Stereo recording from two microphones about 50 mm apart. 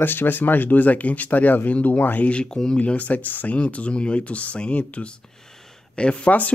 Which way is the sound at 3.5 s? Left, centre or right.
Left.